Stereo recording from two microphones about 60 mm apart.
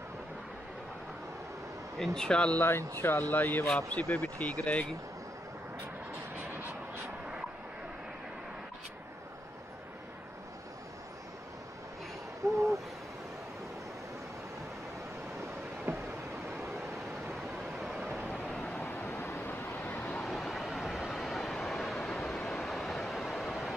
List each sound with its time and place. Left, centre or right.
2.0 s speech: centre
3.0 s speech: left
6.3 s vehicle: right
12.4 s owl: right
15.9 s a sound: right
17.7 s vehicle: centre
18.8 s vehicle: left
20.2 s vehicle: centre
23.4 s a sound: centre